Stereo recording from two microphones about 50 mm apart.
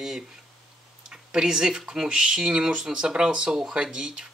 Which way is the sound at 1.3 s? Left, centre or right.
Centre.